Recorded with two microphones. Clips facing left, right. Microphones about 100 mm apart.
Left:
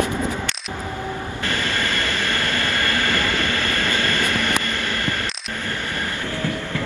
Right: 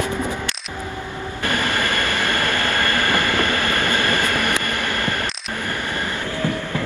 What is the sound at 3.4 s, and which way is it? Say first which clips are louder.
Train: right 3 dB; 55° right (ahead or behind).